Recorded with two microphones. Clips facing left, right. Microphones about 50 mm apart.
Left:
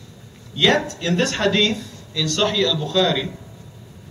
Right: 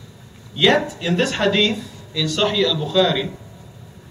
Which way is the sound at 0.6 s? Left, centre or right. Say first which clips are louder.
Right 2 dB; centre.